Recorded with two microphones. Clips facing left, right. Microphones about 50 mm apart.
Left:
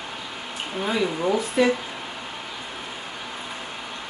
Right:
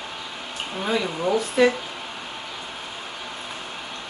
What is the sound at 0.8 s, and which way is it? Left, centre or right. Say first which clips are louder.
Speech: even; centre.